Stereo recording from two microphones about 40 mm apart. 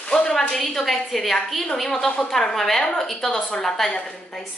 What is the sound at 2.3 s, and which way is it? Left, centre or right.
A woman's voice, centre.